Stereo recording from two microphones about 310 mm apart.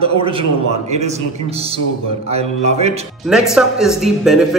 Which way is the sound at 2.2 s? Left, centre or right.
Centre.